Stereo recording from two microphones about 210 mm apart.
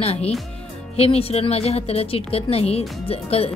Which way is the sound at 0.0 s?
30° left (ahead or behind).